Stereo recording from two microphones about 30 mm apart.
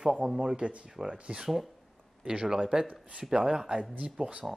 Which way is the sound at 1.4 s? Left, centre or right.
Centre.